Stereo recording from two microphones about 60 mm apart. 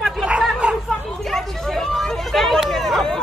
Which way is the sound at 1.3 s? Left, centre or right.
Centre.